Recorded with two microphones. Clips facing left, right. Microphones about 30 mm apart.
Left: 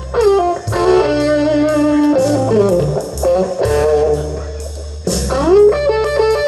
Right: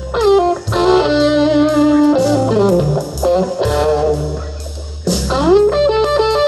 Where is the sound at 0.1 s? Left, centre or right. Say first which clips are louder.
Even; right.